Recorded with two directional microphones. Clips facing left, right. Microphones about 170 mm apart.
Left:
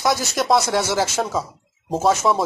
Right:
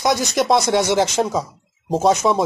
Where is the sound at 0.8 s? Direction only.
20° right (ahead or behind).